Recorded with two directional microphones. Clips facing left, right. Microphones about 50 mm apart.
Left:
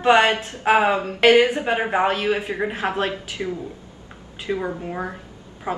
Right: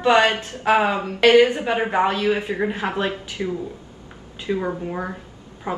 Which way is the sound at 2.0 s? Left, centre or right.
Left.